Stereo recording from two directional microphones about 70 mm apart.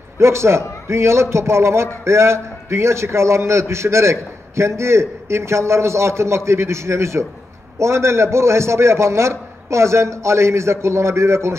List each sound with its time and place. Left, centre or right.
0.2 s a man's voice: right